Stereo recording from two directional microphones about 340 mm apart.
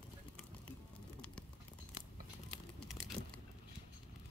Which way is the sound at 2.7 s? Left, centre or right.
Centre.